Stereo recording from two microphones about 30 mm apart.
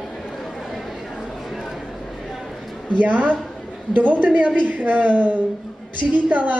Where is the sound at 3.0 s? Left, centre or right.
Right.